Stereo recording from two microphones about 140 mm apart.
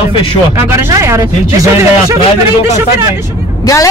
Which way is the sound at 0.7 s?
20° right (ahead or behind).